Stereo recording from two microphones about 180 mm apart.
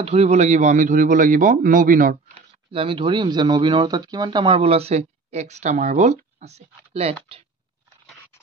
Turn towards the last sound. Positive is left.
turn(degrees=-35)  # may be behind; listen again after turning